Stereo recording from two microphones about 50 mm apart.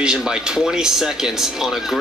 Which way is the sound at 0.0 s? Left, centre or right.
Centre.